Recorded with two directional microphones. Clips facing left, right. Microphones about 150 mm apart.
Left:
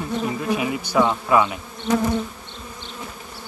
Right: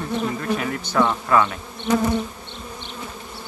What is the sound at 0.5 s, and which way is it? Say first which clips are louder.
Speech: left 2 dB; 10° left (ahead or behind).